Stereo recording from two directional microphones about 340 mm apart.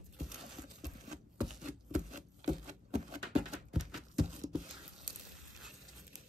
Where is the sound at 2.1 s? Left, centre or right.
Right.